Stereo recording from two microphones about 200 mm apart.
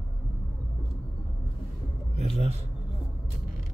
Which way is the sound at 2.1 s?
30° right (ahead or behind).